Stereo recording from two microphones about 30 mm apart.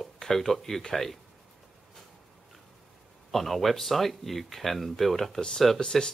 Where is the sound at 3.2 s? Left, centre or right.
Centre.